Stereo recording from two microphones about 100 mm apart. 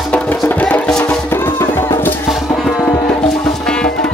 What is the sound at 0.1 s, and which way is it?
Music, 15° left (ahead or behind).